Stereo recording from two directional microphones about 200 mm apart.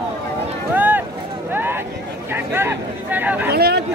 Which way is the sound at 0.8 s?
10° right (ahead or behind).